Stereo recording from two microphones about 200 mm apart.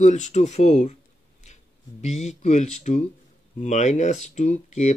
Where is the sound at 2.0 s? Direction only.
35° left (ahead or behind).